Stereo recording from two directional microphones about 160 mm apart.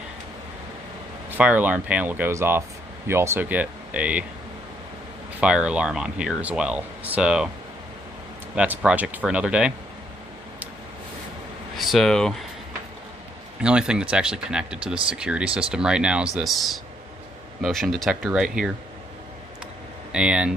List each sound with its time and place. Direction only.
1.3 s speech: 10° right (ahead or behind)
5.4 s speech: 5° right (ahead or behind)
8.5 s speech: 10° right (ahead or behind)
11.7 s speech: centre (ahead or behind)
13.6 s speech: 5° right (ahead or behind)
20.1 s speech: 5° right (ahead or behind)